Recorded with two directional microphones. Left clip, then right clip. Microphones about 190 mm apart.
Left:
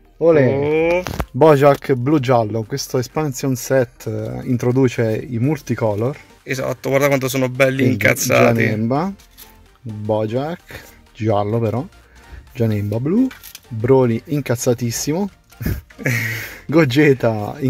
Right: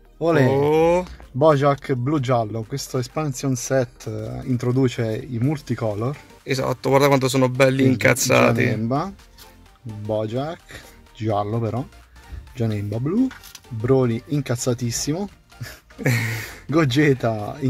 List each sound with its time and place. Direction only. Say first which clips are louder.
0.2 s speech: left 6 dB; 35° left (ahead or behind)
0.5 s speech: left 1 dB; 15° right (ahead or behind)
1.4 s speech: left 5 dB; 50° left (ahead or behind)
6.4 s speech: left 1 dB; 5° right (ahead or behind)
8.6 s speech: left 4 dB; 40° left (ahead or behind)
16.0 s speech: left 3 dB; 10° right (ahead or behind)
16.7 s speech: left 5 dB; 40° left (ahead or behind)